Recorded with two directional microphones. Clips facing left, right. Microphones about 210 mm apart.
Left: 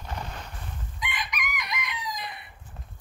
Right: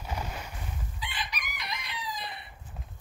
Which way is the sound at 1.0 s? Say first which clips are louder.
Left 5 dB; 30° right (ahead or behind).